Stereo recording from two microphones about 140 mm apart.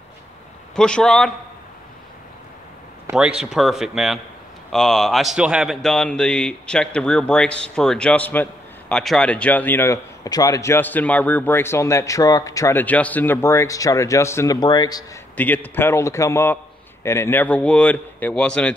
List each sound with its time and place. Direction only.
0.7 s a man's voice: 5° left (ahead or behind)
3.1 s a man's voice: 5° right (ahead or behind); by 15.0 s 30° left (ahead or behind)
15.3 s speech: 15° left (ahead or behind)